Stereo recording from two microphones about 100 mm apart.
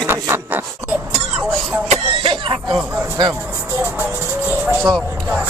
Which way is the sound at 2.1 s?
60° right (ahead or behind).